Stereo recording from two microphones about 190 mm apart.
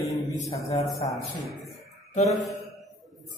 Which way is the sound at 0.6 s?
15° left (ahead or behind).